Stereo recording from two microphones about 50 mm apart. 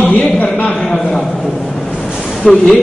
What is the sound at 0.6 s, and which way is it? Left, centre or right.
Speech, left.